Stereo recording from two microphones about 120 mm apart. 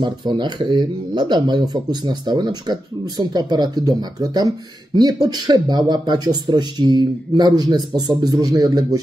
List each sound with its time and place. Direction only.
0.0 s speech: 40° right (ahead or behind)